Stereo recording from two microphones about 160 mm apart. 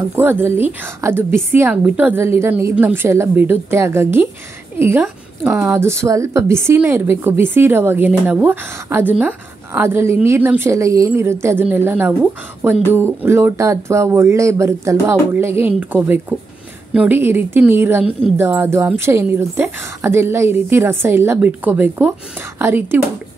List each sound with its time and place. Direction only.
0.1 s a woman's voice: 15° right (ahead or behind)